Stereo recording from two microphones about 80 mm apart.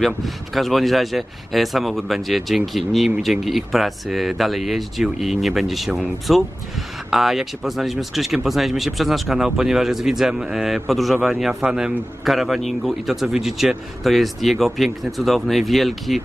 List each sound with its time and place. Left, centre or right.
0.0 s a man's voice: centre